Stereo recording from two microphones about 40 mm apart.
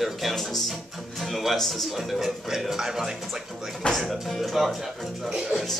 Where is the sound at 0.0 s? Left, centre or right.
Centre.